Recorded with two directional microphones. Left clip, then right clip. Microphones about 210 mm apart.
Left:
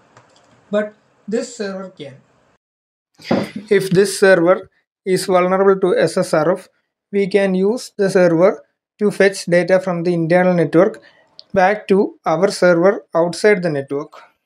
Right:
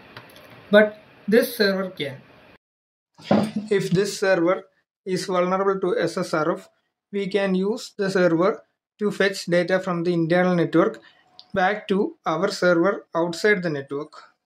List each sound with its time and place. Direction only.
1.8 s speech: centre (ahead or behind)
3.2 s speech: 15° left (ahead or behind)